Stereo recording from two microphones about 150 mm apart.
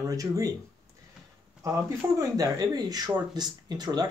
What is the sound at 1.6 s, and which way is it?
Speech, 20° right (ahead or behind).